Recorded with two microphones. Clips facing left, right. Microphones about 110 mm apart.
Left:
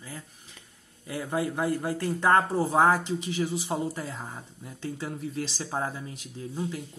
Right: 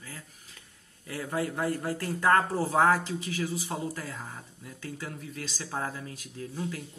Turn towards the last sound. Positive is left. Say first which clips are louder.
# left 2 dB
turn(degrees=20)  # may be behind; listen again after turning